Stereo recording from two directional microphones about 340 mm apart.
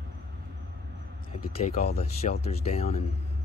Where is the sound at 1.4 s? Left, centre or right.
Left.